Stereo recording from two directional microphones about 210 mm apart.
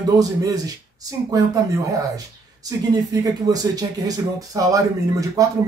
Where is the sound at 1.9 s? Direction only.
15° right (ahead or behind).